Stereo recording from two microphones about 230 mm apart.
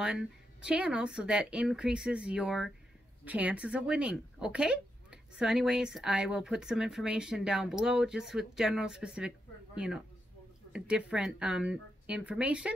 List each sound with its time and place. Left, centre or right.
0.0 s speech: centre